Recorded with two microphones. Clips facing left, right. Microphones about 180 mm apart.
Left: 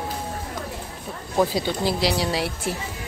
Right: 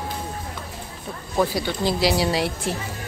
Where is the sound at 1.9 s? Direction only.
Centre (ahead or behind).